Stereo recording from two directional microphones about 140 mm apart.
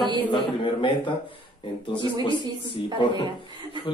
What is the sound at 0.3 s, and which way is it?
Speech, 35° left (ahead or behind).